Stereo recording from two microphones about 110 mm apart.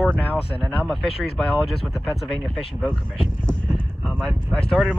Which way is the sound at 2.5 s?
5° left (ahead or behind).